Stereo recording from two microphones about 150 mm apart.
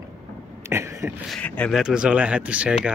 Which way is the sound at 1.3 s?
10° left (ahead or behind).